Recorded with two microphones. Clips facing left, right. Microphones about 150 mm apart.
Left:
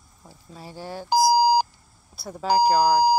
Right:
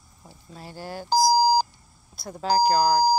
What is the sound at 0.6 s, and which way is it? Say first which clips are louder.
Speech: left 1 dB; centre (ahead or behind).